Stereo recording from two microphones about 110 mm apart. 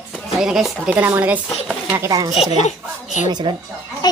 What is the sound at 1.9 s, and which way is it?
Speech, 30° right (ahead or behind).